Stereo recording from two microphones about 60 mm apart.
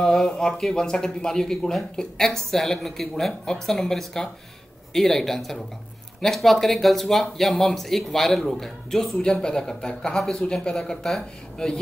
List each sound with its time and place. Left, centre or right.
0.0 s speech: centre